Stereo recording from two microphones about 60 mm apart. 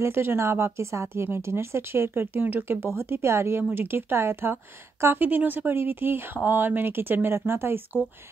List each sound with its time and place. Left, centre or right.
0.0 s speech: right